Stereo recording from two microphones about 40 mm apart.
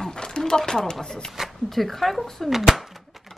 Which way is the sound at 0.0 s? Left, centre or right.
Centre.